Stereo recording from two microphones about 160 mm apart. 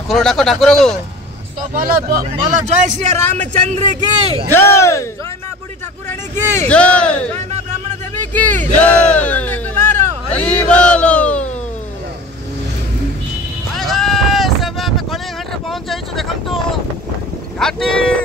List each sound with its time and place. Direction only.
0.1 s speech: centre (ahead or behind)
1.7 s speech: 60° right (ahead or behind)
2.7 s a man's voice: 45° right (ahead or behind)
4.5 s speech: 15° left (ahead or behind)
6.7 s speech: 5° left (ahead or behind)
8.3 s speech: 10° left (ahead or behind)
13.7 s sheep: centre (ahead or behind)
15.7 s vehicle: centre (ahead or behind)
17.6 s speech: 5° left (ahead or behind)